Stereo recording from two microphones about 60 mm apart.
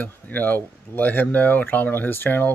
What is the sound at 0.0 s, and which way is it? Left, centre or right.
Speech, left.